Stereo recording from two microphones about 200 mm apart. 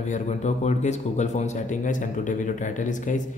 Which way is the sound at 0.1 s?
35° left (ahead or behind).